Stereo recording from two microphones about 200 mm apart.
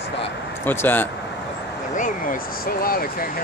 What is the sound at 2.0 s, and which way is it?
Speech, 40° left (ahead or behind).